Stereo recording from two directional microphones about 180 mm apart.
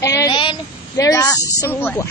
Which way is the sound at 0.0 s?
20° left (ahead or behind).